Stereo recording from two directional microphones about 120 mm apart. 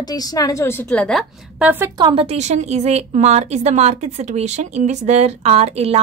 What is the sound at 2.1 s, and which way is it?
A woman's voice, 55° right (ahead or behind).